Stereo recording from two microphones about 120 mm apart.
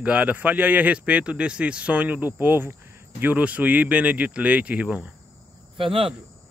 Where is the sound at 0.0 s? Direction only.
10° right (ahead or behind).